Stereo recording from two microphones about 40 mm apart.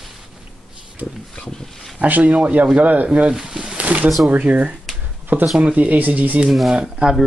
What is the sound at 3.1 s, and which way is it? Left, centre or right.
Speech, right.